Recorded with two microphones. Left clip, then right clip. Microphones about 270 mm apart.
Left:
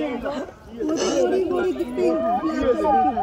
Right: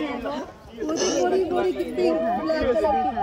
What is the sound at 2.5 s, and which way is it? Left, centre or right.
Speech, left.